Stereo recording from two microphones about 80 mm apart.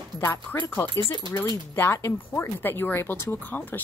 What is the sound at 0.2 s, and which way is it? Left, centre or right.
Speech, left.